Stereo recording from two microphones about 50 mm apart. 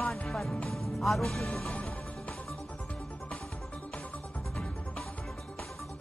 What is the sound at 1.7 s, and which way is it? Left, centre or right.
Music, left.